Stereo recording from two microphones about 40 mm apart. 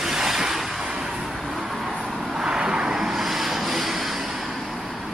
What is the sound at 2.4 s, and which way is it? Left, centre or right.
Vehicle, centre.